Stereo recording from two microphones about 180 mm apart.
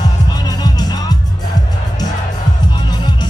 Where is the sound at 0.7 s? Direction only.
20° left (ahead or behind).